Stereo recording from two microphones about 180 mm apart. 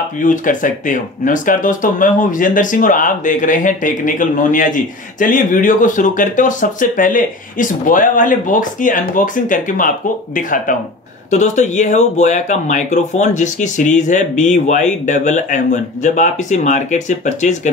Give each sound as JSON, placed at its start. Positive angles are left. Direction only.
{"t": 0.2, "sound": "speech", "side_deg": 45}